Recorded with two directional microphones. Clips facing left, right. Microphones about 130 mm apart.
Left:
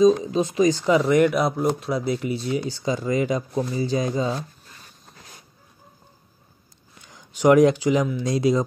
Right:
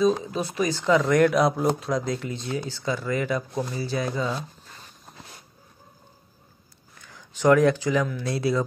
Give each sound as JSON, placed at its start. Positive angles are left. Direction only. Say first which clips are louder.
{"t": 0.2, "sound": "speech", "louder": "left 6 dB", "side_deg": 20}
{"t": 7.0, "sound": "speech", "louder": "left 3 dB", "side_deg": 15}